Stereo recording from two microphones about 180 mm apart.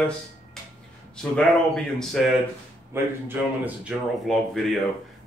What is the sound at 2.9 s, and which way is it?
Speech, 10° right (ahead or behind).